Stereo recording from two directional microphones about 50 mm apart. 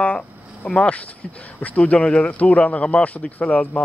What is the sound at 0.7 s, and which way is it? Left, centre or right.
Speech, left.